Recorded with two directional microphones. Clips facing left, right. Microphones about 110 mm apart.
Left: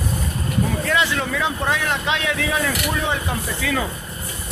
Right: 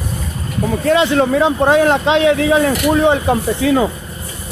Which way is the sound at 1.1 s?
40° right (ahead or behind).